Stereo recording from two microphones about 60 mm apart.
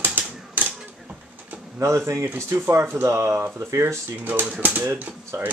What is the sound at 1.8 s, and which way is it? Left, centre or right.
A man's voice, right.